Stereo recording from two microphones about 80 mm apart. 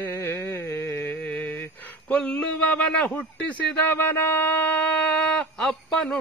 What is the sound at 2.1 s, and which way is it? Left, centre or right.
Speech, centre.